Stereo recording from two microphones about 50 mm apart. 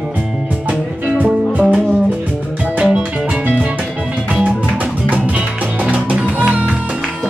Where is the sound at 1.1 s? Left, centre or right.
Right.